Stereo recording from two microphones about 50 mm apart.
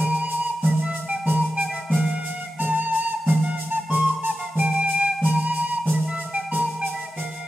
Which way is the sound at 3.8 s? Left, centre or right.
Centre.